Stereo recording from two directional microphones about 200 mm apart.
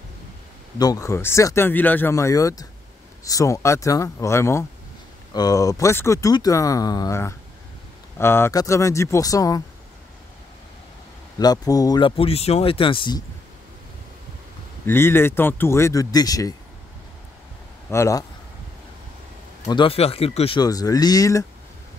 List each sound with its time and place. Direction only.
0.7 s speech: 15° left (ahead or behind)
11.3 s speech: 20° left (ahead or behind)
14.9 s speech: 10° left (ahead or behind)
17.8 s speech: 15° left (ahead or behind)
19.7 s speech: 25° left (ahead or behind)